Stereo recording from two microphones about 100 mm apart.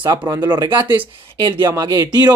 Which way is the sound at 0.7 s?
20° right (ahead or behind).